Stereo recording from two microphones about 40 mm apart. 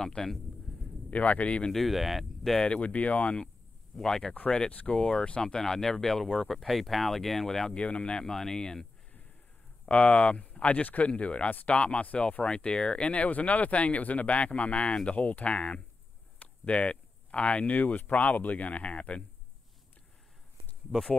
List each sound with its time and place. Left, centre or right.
0.0 s speech: centre
1.1 s speech: left
1.7 s speech: centre
2.6 s speech: left
3.9 s speech: centre
4.2 s speech: left
5.4 s speech: centre
7.7 s speech: left
9.8 s speech: left
16.3 s a sound: left
17.7 s speech: left